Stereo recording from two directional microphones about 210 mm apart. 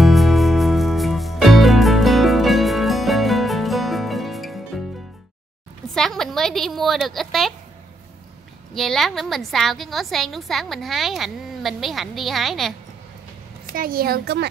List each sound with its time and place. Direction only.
0.0 s music: centre (ahead or behind)
5.9 s a woman's voice: centre (ahead or behind)
8.7 s a woman's voice: centre (ahead or behind)
13.7 s a child's voice: 45° right (ahead or behind)